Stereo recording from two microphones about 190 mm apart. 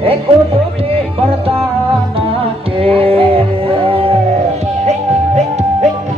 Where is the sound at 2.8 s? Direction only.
30° right (ahead or behind).